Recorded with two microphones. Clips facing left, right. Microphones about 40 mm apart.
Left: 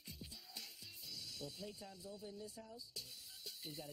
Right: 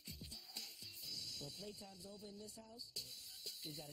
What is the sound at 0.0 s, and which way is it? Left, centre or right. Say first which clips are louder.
Speech: left 1 dB; centre.